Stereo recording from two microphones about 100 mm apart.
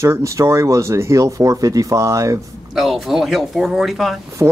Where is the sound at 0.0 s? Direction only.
30° right (ahead or behind).